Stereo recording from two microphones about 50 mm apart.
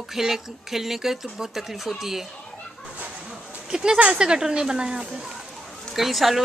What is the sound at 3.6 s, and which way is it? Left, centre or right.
A woman's voice, centre.